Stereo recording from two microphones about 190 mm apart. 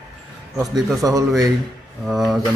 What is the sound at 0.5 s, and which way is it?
Speech, 20° right (ahead or behind).